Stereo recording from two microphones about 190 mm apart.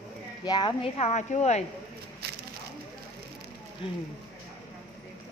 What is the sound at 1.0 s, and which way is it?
Speech, 35° left (ahead or behind).